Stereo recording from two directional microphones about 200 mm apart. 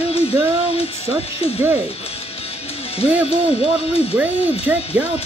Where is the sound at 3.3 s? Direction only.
30° left (ahead or behind).